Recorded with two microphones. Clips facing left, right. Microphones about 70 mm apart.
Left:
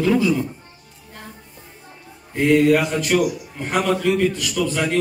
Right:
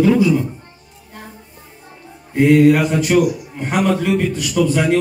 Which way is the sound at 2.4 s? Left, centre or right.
Centre.